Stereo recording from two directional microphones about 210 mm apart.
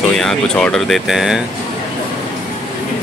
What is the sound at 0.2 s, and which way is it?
Speech, centre (ahead or behind).